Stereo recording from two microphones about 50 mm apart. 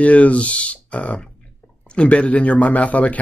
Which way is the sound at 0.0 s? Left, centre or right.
Left.